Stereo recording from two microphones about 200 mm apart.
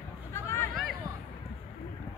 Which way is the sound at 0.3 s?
15° left (ahead or behind).